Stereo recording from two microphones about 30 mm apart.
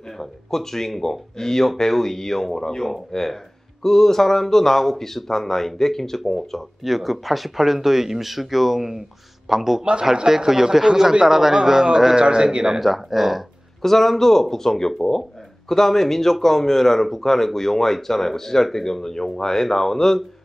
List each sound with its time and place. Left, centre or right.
0.2 s a man's voice: centre
6.8 s speech: centre
12.2 s a man's voice: right
12.4 s speech: centre
12.8 s speech: centre
13.8 s a man's voice: centre